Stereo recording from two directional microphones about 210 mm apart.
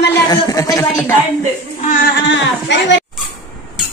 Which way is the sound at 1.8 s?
40° left (ahead or behind).